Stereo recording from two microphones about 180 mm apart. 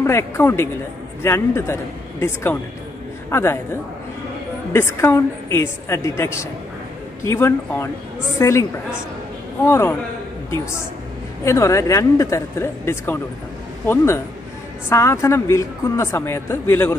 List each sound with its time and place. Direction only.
0.0 s a woman's voice: 15° left (ahead or behind)
4.7 s a woman's voice: 15° left (ahead or behind)
9.7 s a woman's voice: 15° left (ahead or behind)
11.4 s a woman's voice: 15° left (ahead or behind)